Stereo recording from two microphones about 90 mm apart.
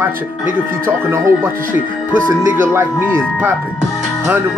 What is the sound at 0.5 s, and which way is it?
Speech, 25° right (ahead or behind).